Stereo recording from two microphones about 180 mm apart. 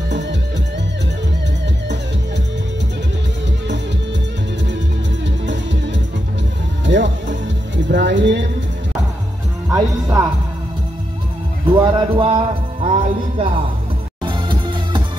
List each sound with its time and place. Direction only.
0.1 s music: 75° right (ahead or behind)
5.5 s music: 85° right
9.7 s music: 20° right (ahead or behind)
11.6 s a sound: 30° right (ahead or behind)
12.8 s music: 35° right (ahead or behind)